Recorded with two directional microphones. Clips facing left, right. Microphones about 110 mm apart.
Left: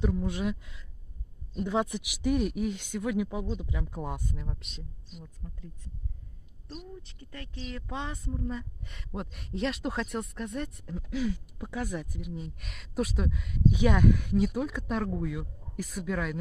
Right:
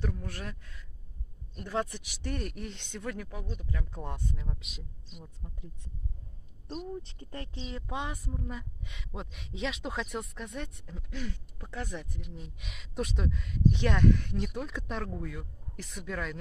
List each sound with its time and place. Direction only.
0.0 s speech: 15° left (ahead or behind); by 4.8 s centre (ahead or behind)
5.1 s speech: 20° right (ahead or behind)
6.7 s speech: 35° right (ahead or behind)
7.8 s a woman's voice: 10° right (ahead or behind); by 16.3 s 5° left (ahead or behind)